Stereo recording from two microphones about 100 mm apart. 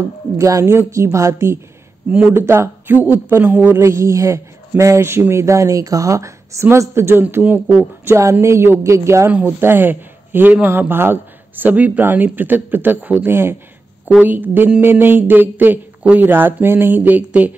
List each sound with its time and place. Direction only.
0.4 s a woman's voice: 30° right (ahead or behind)
2.0 s speech: 10° right (ahead or behind)
2.3 s a man's voice: 25° right (ahead or behind)